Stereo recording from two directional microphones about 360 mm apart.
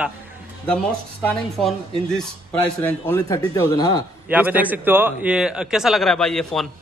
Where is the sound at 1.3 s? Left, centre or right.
Centre.